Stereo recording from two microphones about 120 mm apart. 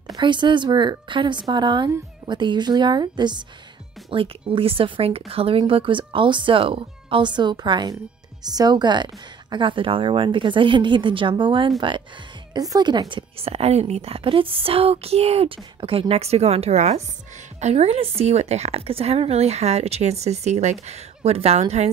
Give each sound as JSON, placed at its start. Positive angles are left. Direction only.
{"t": 0.1, "sound": "a woman's voice", "side_deg": -40}
{"t": 4.1, "sound": "a woman's voice", "side_deg": -50}
{"t": 12.5, "sound": "a woman's voice", "side_deg": -30}
{"t": 13.4, "sound": "a woman's voice", "side_deg": -60}